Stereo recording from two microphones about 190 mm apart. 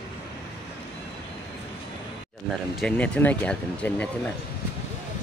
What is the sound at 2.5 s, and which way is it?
Speech, centre (ahead or behind).